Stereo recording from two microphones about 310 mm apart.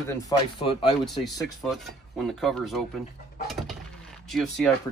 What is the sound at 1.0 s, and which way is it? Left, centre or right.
Speech, centre.